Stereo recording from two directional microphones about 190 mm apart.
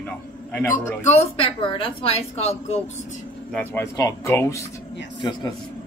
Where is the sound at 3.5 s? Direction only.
15° left (ahead or behind).